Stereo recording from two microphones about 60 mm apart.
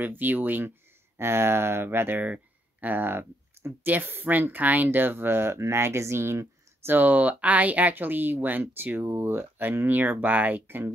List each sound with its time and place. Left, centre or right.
0.0 s speech: right
2.1 s speech: right